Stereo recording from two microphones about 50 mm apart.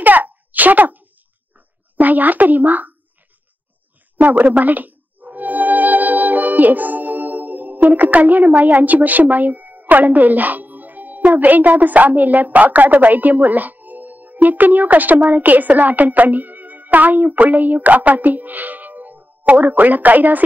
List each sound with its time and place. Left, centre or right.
0.0 s a sound: right
2.0 s speech: right
4.2 s speech: right